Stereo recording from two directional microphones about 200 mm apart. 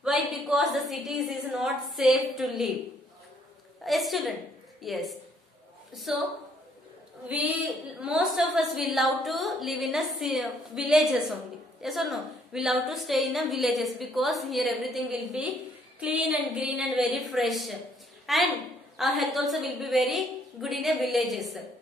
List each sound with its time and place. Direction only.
0.0 s a woman's voice: centre (ahead or behind)
3.8 s a woman's voice: centre (ahead or behind)
7.2 s a woman's voice: 10° right (ahead or behind)
18.2 s a sound: centre (ahead or behind)
18.9 s a woman's voice: centre (ahead or behind)